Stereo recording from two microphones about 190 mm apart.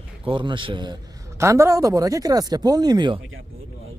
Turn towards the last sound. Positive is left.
turn(degrees=-25)  # may be behind; listen again after turning